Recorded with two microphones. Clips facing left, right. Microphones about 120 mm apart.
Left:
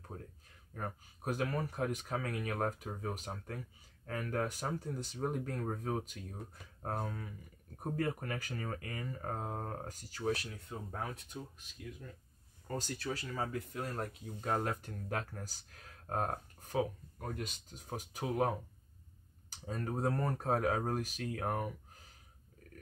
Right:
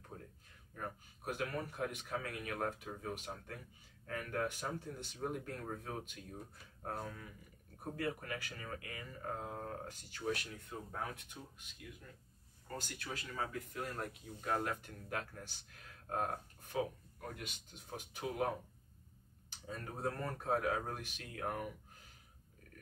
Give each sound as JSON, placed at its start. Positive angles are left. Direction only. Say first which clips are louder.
{"t": 0.7, "sound": "speech", "louder": "left 3 dB", "side_deg": 35}
{"t": 19.5, "sound": "speech", "louder": "left 7 dB", "side_deg": 40}